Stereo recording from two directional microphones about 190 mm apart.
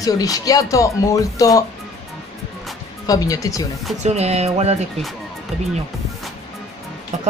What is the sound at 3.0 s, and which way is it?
Speech, 20° left (ahead or behind).